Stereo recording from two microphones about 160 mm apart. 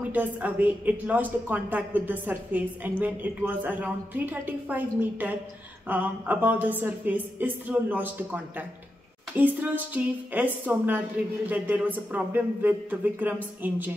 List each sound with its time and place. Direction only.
0.0 s a woman's voice: 10° right (ahead or behind)